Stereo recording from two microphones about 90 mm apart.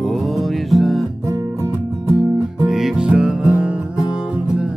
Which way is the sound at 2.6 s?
5° right (ahead or behind).